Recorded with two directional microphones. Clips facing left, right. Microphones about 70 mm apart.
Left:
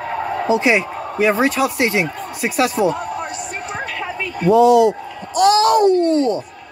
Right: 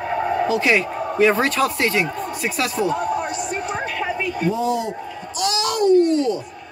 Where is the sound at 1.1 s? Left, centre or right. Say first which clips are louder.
Left 1 dB; centre.